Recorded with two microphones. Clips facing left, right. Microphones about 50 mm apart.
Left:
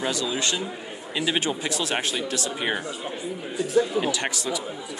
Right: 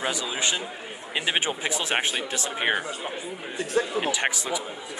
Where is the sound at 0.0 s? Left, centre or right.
Centre.